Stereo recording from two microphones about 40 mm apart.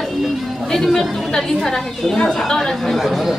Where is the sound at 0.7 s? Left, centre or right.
Centre.